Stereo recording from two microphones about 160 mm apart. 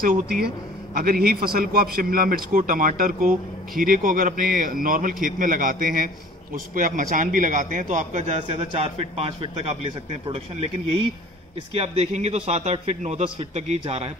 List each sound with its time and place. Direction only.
0.0 s a man's voice: 65° right (ahead or behind); by 10.4 s 40° right (ahead or behind)
11.7 s a man's voice: 40° right (ahead or behind)